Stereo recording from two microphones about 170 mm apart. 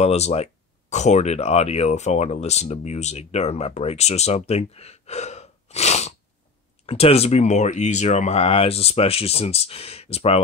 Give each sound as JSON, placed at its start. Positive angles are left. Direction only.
{"t": 0.0, "sound": "speech", "side_deg": 40}